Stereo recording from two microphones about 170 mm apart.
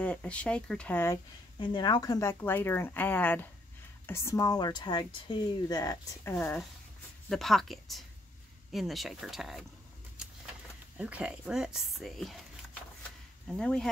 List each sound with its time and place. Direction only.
0.0 s speech: 5° left (ahead or behind)
1.6 s a woman's voice: 25° left (ahead or behind)
6.3 s speech: 10° left (ahead or behind)
11.0 s speech: 5° right (ahead or behind)
13.5 s speech: 5° left (ahead or behind)